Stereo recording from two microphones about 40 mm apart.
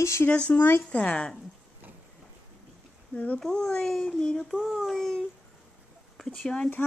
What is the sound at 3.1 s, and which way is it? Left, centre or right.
Speech, left.